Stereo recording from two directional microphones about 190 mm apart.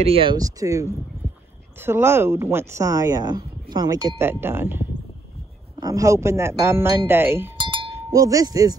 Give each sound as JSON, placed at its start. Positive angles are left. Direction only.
{"t": 0.0, "sound": "speech", "side_deg": -30}
{"t": 7.5, "sound": "cowbell", "side_deg": -25}
{"t": 7.9, "sound": "speech", "side_deg": -20}